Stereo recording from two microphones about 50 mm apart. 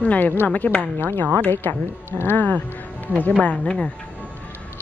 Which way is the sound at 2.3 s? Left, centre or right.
Left.